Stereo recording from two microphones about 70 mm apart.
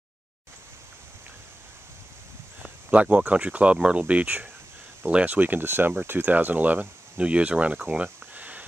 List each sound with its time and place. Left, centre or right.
2.6 s speech: centre